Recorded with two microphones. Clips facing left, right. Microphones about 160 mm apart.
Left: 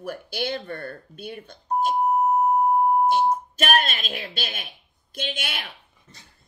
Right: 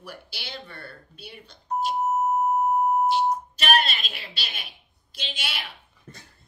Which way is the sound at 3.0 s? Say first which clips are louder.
Left 2 dB; 50° left (ahead or behind).